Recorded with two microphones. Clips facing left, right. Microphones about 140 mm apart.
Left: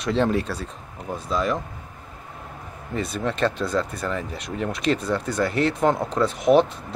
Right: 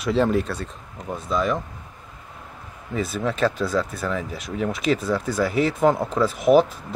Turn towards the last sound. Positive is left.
turn(degrees=-5)  # may be behind; listen again after turning